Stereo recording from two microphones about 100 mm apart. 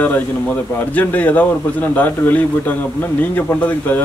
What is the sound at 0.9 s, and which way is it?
A man's voice, 15° left (ahead or behind).